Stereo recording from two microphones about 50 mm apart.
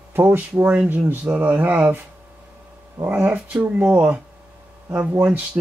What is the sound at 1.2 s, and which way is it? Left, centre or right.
Speech, right.